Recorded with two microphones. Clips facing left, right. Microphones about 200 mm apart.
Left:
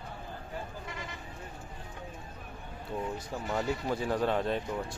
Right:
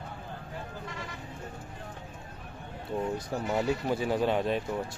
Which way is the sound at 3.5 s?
20° right (ahead or behind).